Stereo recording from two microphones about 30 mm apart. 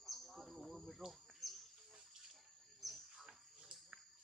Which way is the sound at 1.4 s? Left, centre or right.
Centre.